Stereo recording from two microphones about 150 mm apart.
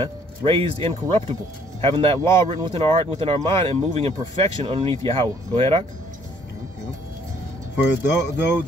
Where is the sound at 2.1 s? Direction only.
20° left (ahead or behind).